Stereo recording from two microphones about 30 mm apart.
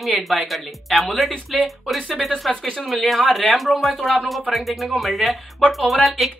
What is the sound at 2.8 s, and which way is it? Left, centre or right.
Speech, centre.